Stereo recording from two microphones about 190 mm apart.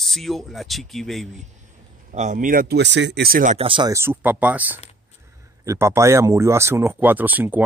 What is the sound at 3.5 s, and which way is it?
Speech, 25° right (ahead or behind).